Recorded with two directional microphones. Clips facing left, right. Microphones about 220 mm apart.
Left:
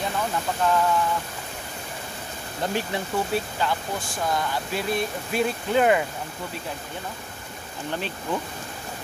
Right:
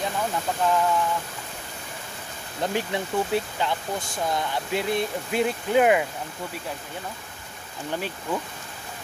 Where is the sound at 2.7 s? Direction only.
20° right (ahead or behind).